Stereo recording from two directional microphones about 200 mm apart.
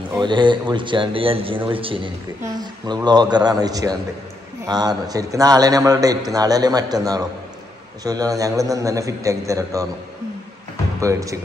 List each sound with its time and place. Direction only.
0.2 s a man's voice: 25° right (ahead or behind)
11.0 s a man's voice: 15° right (ahead or behind)